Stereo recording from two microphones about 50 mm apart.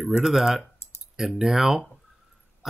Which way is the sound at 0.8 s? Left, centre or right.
Left.